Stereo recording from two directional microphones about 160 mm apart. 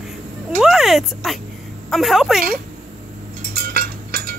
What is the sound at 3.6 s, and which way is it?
Cutlery, 70° right (ahead or behind).